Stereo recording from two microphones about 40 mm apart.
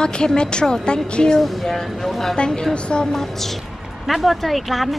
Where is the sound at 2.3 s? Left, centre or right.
Left.